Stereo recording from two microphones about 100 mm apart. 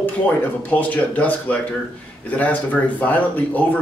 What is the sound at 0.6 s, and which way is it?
Speech, 15° left (ahead or behind).